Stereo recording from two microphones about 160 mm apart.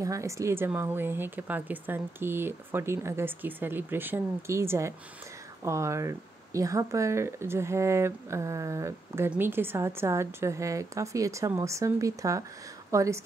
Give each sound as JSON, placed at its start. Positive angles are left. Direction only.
{"t": 0.0, "sound": "a woman's voice", "side_deg": -20}